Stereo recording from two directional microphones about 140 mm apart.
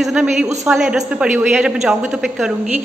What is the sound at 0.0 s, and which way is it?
A man's voice, 5° right (ahead or behind).